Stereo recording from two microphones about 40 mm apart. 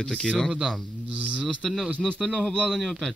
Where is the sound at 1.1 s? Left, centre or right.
Right.